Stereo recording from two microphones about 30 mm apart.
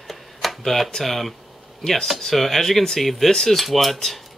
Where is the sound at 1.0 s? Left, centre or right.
Centre.